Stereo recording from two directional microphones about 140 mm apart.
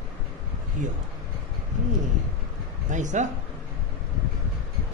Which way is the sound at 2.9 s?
60° right (ahead or behind).